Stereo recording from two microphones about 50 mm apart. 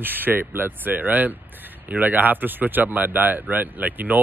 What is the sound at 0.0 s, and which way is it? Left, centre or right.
Speech, right.